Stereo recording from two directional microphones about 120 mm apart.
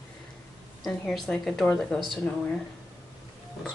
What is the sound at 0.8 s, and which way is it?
Speech, 5° left (ahead or behind).